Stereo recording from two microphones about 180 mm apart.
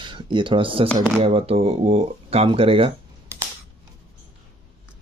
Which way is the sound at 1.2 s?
30° right (ahead or behind).